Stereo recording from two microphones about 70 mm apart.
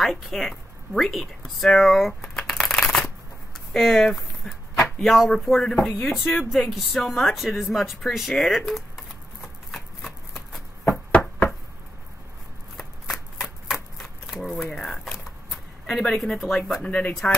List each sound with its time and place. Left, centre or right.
0.0 s speech: centre
2.3 s shuffling cards: centre
3.7 s speech: centre
7.7 s a sound: centre
12.7 s shuffling cards: centre
15.9 s speech: centre